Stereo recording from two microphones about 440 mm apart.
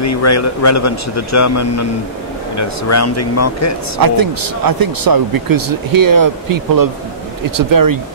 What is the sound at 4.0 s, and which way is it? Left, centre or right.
Speech, right.